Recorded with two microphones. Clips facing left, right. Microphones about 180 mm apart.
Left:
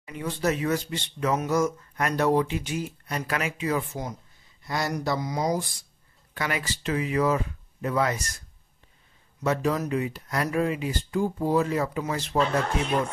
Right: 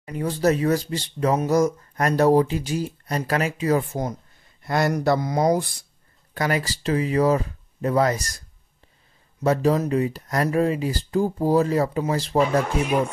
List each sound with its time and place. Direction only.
0.0 s speech: 40° right (ahead or behind); by 5.7 s 60° right (ahead or behind)
6.3 s speech: 40° right (ahead or behind)
12.4 s speech: 10° right (ahead or behind)